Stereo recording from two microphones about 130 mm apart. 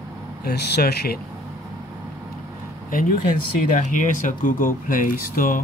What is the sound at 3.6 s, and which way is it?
Speech, 75° left (ahead or behind).